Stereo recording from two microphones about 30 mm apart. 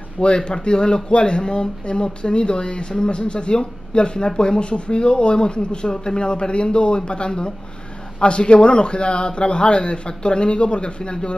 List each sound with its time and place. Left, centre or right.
0.5 s speech: left